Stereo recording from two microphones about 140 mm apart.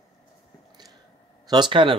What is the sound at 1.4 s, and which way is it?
Speech, 30° right (ahead or behind).